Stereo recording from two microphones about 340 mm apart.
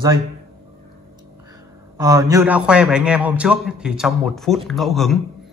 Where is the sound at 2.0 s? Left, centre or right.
Centre.